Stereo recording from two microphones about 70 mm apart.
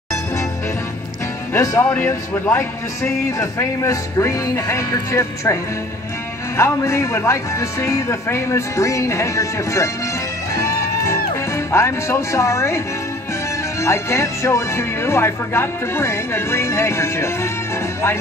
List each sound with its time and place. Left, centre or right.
1.5 s speech: left
3.3 s a man's voice: left
10.5 s music: left
13.7 s speech: left